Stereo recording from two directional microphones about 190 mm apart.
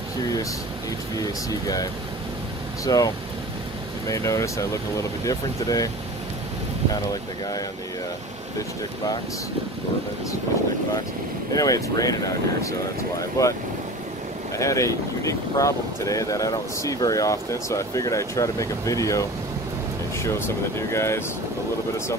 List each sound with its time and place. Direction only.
1.1 s speech: 20° left (ahead or behind)
4.1 s speech: 15° left (ahead or behind)
11.5 s speech: 20° left (ahead or behind)
14.6 s speech: 15° left (ahead or behind)